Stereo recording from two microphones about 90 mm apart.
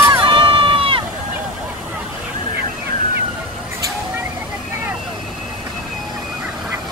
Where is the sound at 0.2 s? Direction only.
70° right (ahead or behind).